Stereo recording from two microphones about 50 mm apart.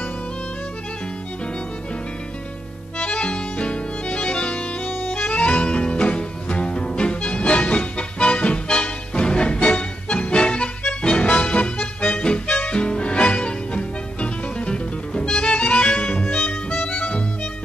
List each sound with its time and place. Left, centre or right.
3.0 s music: left